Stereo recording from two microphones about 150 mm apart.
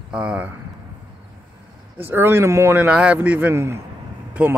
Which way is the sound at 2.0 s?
15° right (ahead or behind).